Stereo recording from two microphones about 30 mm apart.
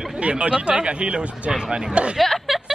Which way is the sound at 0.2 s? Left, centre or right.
Right.